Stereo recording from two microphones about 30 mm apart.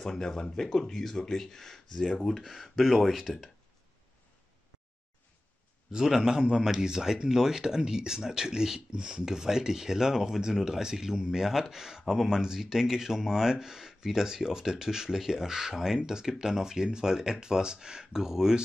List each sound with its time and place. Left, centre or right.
0.0 s speech: centre
2.4 s a man's voice: centre
5.9 s a man's voice: centre